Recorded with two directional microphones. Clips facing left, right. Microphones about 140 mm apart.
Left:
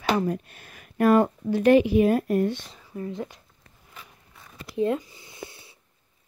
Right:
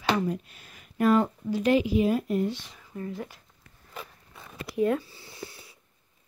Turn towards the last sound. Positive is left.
turn(degrees=25)  # may be behind; listen again after turning